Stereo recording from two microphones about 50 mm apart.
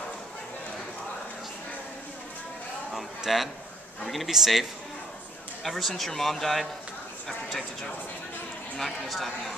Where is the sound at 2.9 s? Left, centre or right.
Centre.